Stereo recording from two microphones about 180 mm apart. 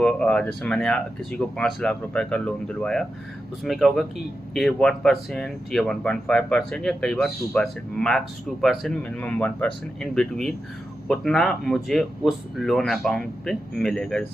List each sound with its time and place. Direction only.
0.0 s speech: 5° left (ahead or behind)